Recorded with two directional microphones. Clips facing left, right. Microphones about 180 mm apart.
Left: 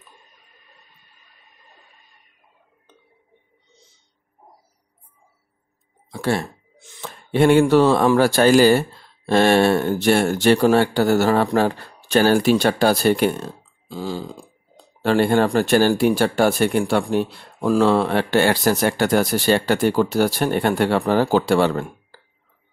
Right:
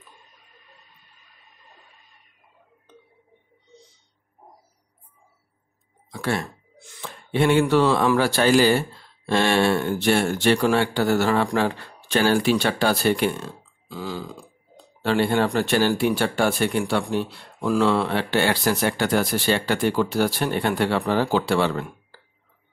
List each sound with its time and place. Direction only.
6.1 s a sound: 30° left (ahead or behind)
7.0 s speech: 45° left (ahead or behind); by 14.4 s 30° left (ahead or behind)
15.0 s speech: 45° left (ahead or behind)